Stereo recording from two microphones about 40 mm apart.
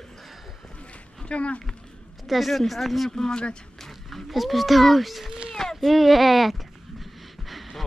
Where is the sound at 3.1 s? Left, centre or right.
Centre.